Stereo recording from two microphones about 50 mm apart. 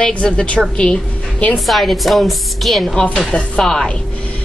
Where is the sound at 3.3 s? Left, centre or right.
Centre.